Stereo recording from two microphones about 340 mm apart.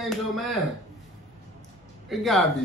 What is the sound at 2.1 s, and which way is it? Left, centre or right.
Speech, centre.